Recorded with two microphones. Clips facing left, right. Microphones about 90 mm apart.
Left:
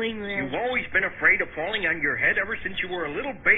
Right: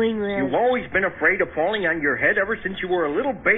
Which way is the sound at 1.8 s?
55° right (ahead or behind).